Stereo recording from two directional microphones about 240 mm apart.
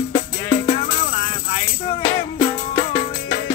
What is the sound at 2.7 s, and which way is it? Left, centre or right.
Music, left.